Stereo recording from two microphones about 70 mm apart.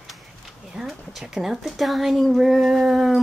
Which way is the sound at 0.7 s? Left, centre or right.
Centre.